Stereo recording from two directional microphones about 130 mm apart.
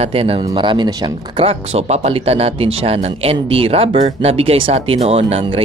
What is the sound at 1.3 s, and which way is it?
Speech, 50° right (ahead or behind).